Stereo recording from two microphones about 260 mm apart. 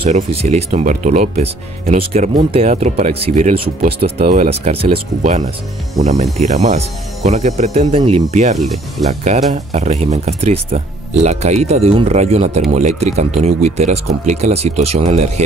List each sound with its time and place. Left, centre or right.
0.1 s speech: right
8.5 s speech: centre
9.5 s speech: right